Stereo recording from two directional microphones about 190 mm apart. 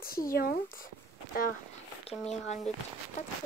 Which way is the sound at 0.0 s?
50° left (ahead or behind).